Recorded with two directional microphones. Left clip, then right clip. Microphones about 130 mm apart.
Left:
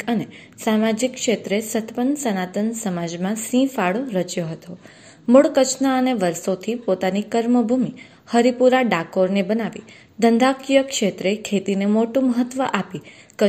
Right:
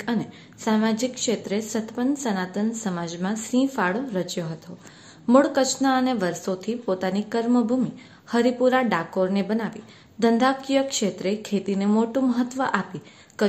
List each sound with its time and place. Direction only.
0.0 s a woman's voice: 20° left (ahead or behind)